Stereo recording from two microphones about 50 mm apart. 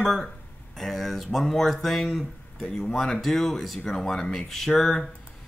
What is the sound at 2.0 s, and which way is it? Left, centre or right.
Speech, centre.